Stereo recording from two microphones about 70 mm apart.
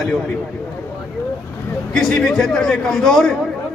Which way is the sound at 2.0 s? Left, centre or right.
Centre.